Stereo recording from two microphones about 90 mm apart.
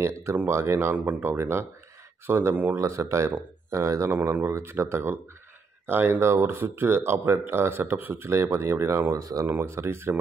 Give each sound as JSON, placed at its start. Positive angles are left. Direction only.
{"t": 0.0, "sound": "speech", "side_deg": -30}
{"t": 0.9, "sound": "speech", "side_deg": -15}
{"t": 9.5, "sound": "speech", "side_deg": -25}